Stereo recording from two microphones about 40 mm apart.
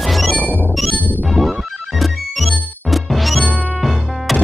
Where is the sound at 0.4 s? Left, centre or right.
Left.